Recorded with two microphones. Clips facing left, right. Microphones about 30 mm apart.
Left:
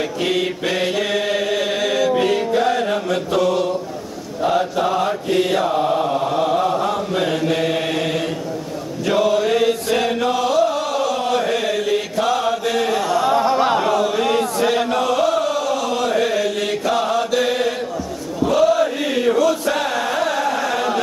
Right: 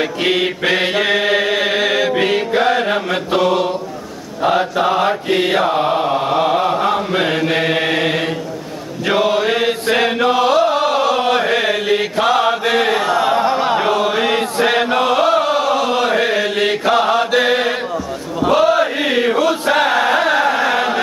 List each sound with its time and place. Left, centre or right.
0.2 s chant: right
4.4 s mantra: right
9.0 s chant: right
13.5 s chant: centre
13.7 s chant: right